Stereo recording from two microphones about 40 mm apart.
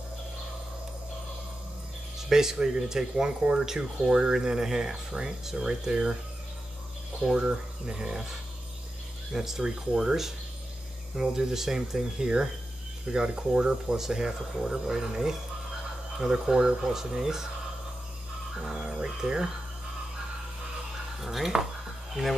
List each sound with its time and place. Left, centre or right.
2.1 s speech: centre
7.3 s speech: right
18.7 s speech: centre
21.2 s speech: centre